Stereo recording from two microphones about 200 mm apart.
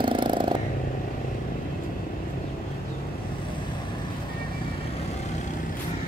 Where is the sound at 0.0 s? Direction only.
25° right (ahead or behind).